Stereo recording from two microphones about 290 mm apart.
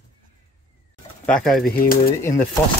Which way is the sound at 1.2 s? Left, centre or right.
Centre.